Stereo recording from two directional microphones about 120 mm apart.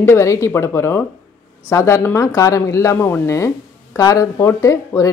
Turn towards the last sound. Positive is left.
turn(degrees=25)  # may be behind; listen again after turning